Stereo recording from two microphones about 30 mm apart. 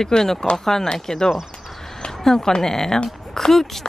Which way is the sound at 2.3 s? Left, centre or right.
Left.